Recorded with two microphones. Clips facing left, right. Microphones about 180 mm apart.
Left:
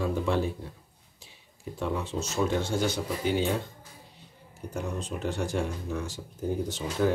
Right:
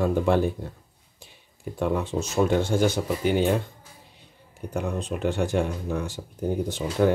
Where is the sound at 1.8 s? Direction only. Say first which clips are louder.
Right 5 dB; 55° right (ahead or behind).